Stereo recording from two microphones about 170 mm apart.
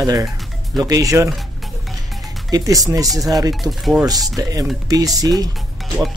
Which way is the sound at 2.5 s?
20° right (ahead or behind).